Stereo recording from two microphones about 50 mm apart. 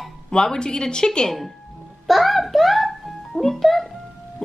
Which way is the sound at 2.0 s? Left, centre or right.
Centre.